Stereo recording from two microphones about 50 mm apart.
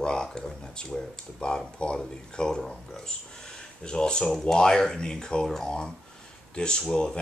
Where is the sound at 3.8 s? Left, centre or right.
Centre.